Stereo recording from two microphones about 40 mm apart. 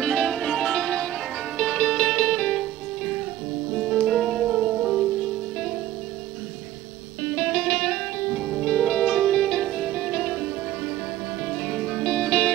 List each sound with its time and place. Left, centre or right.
0.0 s music: centre
2.6 s music: centre
5.2 s music: centre
7.2 s music: centre
8.4 s music: centre
8.6 s music: centre